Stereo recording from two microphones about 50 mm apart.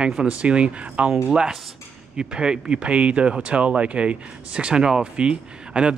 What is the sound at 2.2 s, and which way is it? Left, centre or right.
Speech, centre.